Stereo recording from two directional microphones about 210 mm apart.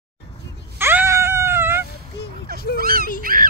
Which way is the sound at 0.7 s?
10° right (ahead or behind).